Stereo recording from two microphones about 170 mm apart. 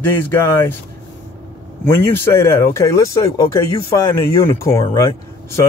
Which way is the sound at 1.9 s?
15° left (ahead or behind).